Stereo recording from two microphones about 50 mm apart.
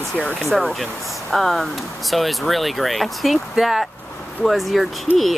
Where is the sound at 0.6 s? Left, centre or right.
Centre.